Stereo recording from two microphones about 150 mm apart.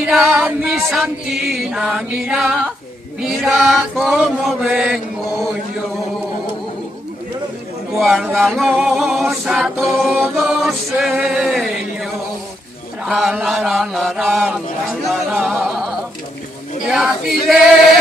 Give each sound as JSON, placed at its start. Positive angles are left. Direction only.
{"t": 0.0, "sound": "chant", "side_deg": 0}
{"t": 8.0, "sound": "chant", "side_deg": 0}